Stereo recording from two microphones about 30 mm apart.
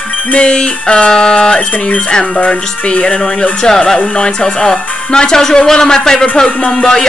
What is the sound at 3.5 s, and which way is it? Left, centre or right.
A man's voice, left.